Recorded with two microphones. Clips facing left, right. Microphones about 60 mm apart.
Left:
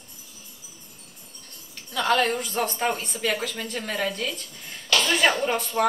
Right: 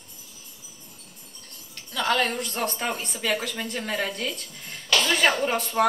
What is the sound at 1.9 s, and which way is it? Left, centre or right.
A woman's voice, centre.